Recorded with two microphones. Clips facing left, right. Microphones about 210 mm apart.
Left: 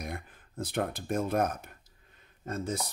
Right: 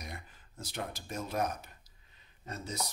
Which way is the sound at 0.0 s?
55° left (ahead or behind).